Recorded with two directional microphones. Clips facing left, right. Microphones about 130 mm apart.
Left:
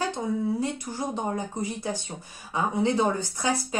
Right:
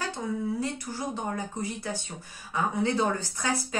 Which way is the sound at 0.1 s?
20° left (ahead or behind).